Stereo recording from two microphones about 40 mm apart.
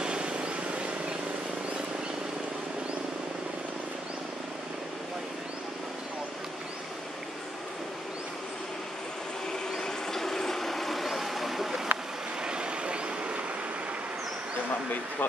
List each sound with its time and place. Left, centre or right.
0.0 s vehicle: right
9.5 s vehicle: centre
12.4 s vehicle: right